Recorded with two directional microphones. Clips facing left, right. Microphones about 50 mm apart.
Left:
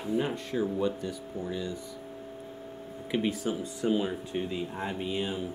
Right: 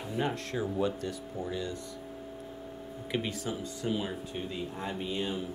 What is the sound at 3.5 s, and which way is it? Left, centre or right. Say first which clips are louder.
Speech: left 5 dB; left.